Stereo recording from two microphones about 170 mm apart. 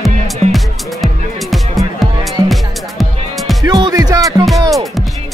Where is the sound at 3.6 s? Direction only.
20° right (ahead or behind).